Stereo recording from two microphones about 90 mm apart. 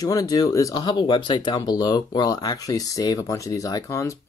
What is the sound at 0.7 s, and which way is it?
Speech, 60° left (ahead or behind).